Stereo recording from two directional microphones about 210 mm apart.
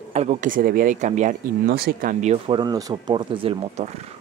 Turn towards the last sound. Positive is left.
turn(degrees=-30)  # may be behind; listen again after turning